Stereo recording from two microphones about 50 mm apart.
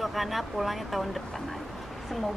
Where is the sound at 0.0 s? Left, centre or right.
Centre.